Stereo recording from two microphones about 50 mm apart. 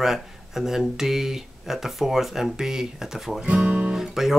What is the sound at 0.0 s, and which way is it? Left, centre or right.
Speech, centre.